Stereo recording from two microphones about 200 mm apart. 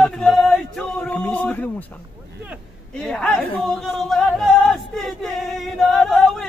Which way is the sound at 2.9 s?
5° left (ahead or behind).